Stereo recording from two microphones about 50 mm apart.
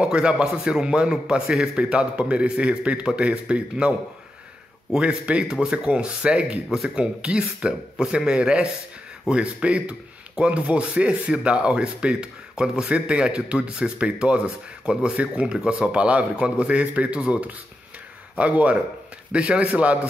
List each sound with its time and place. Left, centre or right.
0.0 s a man's voice: right
4.9 s a man's voice: right